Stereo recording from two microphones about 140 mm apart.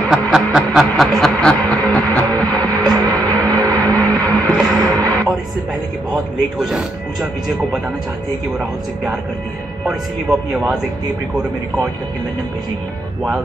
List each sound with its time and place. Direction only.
0.3 s music: 5° right (ahead or behind)
3.1 s music: 25° right (ahead or behind)
3.8 s vehicle: 25° right (ahead or behind)
4.5 s music: centre (ahead or behind)
5.0 s music: 25° right (ahead or behind)
6.6 s speech: 5° right (ahead or behind)